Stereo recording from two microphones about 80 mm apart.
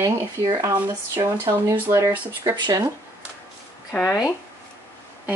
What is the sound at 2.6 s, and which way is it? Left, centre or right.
Speech, right.